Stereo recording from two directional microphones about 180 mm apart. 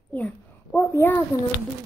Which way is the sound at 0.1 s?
5° left (ahead or behind).